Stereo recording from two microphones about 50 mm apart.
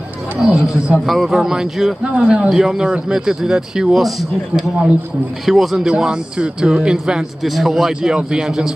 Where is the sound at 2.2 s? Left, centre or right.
Centre.